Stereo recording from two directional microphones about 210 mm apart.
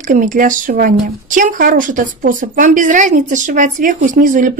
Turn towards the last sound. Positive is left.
turn(degrees=-40)  # may be behind; listen again after turning